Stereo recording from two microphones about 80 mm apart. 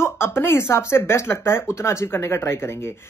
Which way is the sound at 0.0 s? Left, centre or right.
Left.